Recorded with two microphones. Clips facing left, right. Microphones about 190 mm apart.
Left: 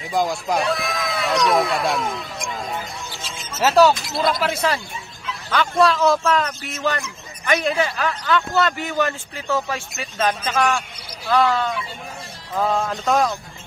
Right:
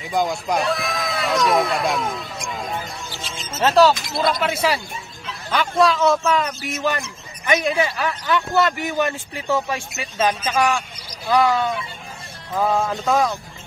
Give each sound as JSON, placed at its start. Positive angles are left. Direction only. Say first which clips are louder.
{"t": 0.1, "sound": "speech", "louder": "even", "side_deg": 0}